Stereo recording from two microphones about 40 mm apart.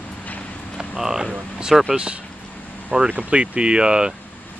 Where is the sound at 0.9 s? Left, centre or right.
Centre.